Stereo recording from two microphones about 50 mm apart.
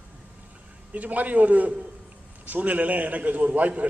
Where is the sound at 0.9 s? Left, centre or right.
Right.